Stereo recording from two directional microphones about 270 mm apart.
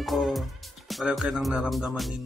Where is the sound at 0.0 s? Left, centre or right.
Centre.